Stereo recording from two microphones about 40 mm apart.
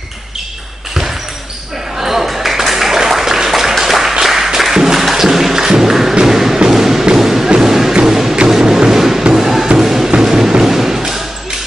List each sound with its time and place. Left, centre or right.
2.0 s a sound: centre
4.1 s music: centre
6.2 s thump: centre
7.2 s music: centre
7.4 s music: centre
10.2 s a sound: centre
10.6 s thump: centre